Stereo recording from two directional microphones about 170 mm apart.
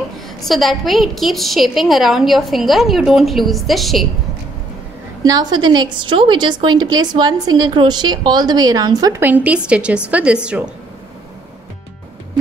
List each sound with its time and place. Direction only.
0.5 s a woman's voice: centre (ahead or behind)
5.2 s a woman's voice: 25° right (ahead or behind); by 10.7 s 5° right (ahead or behind)